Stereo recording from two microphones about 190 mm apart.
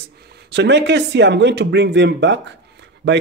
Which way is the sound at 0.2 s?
60° right (ahead or behind).